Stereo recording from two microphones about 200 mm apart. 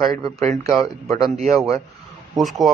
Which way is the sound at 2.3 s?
Centre (ahead or behind).